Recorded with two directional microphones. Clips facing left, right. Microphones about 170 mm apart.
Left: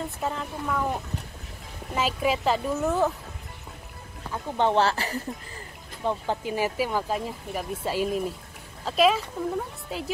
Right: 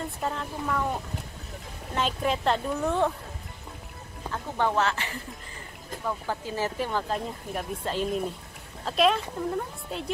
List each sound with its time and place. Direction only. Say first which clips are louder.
0.2 s speech: even; centre (ahead or behind)
2.0 s speech: left 2 dB; 5° left (ahead or behind)
4.6 s speech: left 4 dB; 20° left (ahead or behind)
4.8 s a woman's voice: left 3 dB; 35° left (ahead or behind)
6.0 s speech: left 4 dB; 20° left (ahead or behind); by 10.1 s 5° left (ahead or behind)